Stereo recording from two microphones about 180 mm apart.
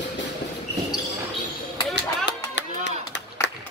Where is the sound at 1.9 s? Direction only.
75° left (ahead or behind).